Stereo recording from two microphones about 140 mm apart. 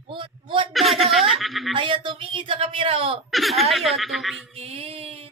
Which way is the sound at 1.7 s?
35° right (ahead or behind).